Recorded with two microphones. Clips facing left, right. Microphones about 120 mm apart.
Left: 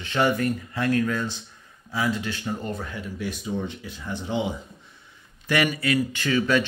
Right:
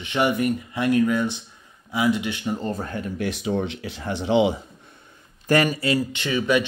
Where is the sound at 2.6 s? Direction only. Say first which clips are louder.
Right 4 dB; 40° right (ahead or behind).